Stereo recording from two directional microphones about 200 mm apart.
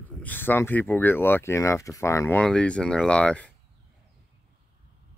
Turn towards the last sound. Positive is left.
turn(degrees=5)  # may be behind; listen again after turning